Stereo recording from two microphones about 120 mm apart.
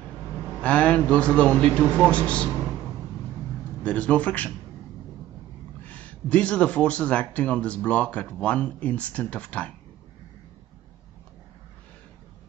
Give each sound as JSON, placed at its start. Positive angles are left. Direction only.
{"t": 0.6, "sound": "speech", "side_deg": 10}
{"t": 3.8, "sound": "speech", "side_deg": 10}
{"t": 5.9, "sound": "speech", "side_deg": 10}